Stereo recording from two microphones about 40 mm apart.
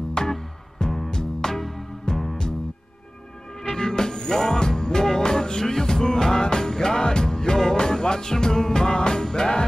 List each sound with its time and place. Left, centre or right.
0.1 s music: centre
3.7 s music: centre